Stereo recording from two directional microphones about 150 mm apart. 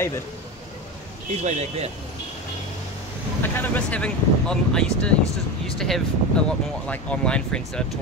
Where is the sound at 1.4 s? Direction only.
50° right (ahead or behind).